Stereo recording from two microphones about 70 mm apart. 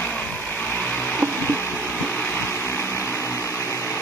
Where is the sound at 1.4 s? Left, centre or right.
Left.